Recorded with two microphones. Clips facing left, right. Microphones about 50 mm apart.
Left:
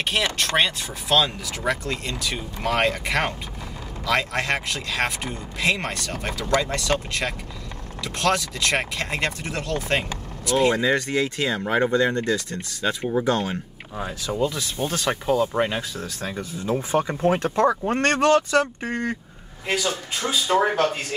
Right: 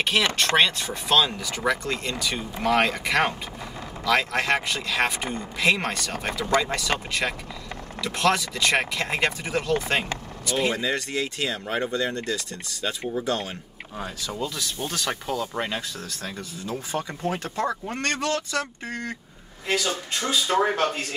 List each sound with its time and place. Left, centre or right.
0.0 s speech: centre
11.4 s speech: centre
11.8 s speech: left
13.4 s speech: centre
14.5 s speech: left
19.7 s speech: centre